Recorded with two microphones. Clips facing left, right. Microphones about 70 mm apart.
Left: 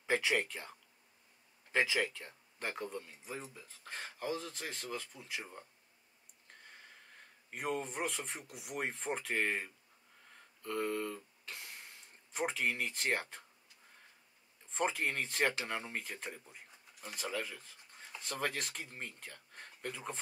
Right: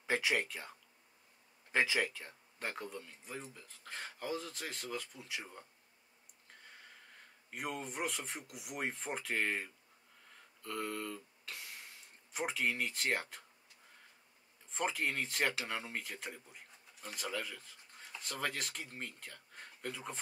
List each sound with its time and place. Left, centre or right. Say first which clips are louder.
0.1 s speech: left 1 dB; centre
1.7 s speech: even; right
2.1 s speech: even; centre
2.9 s speech: left 2 dB; centre
7.5 s speech: left 3 dB; centre
11.0 s speech: left 3 dB; centre
12.4 s speech: left 1 dB; centre
14.7 s speech: left 1 dB; centre
15.2 s speech: left 2 dB; centre